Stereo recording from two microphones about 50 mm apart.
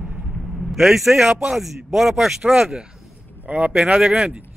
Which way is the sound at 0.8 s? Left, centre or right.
Centre.